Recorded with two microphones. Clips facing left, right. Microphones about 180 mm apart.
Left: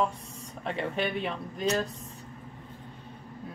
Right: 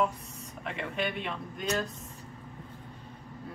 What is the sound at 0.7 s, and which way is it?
Speech, 35° left (ahead or behind).